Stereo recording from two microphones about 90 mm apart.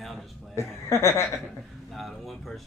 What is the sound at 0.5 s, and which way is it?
Speech, 30° left (ahead or behind).